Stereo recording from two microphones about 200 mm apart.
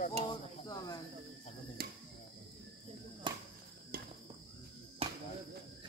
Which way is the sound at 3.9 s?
50° right (ahead or behind).